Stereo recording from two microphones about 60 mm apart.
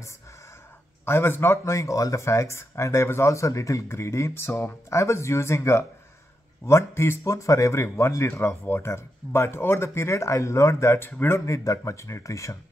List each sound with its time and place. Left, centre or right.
1.0 s speech: left
8.6 s speech: left